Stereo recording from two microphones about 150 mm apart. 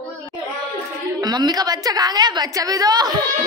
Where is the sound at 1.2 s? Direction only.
25° right (ahead or behind).